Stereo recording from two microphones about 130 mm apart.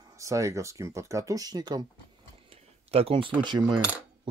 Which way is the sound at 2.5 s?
50° right (ahead or behind).